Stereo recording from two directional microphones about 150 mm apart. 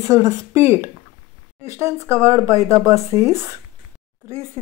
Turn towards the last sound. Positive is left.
turn(degrees=-20)  # may be behind; listen again after turning